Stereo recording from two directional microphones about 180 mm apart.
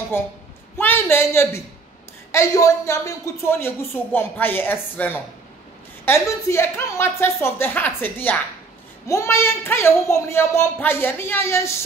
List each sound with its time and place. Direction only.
0.7 s speech: 10° left (ahead or behind)